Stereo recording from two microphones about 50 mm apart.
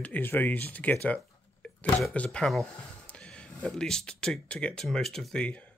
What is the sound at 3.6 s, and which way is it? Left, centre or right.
Speech, centre.